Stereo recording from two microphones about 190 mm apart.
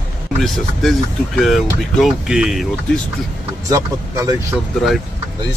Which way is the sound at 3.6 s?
15° right (ahead or behind).